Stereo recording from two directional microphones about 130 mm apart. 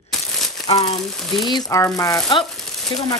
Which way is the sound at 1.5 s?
30° left (ahead or behind).